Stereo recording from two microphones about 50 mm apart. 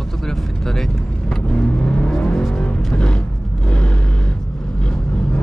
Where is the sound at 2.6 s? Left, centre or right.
Centre.